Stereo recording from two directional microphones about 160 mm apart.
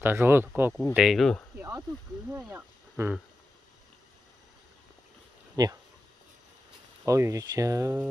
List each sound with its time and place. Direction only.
0.0 s speech: 15° right (ahead or behind)
0.9 s speech: centre (ahead or behind)
1.6 s a sound: 20° right (ahead or behind)
2.5 s speech: 15° right (ahead or behind)
5.6 s speech: 25° right (ahead or behind)
7.1 s speech: 20° right (ahead or behind)